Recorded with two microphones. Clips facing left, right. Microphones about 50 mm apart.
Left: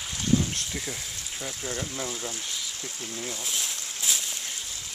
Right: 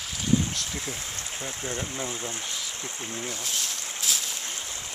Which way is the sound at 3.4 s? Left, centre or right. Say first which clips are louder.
Right 1 dB; centre.